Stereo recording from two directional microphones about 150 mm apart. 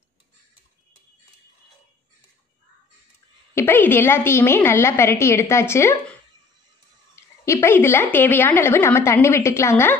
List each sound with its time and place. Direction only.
3.5 s a woman's voice: 15° left (ahead or behind)
7.2 s a woman's voice: 20° left (ahead or behind)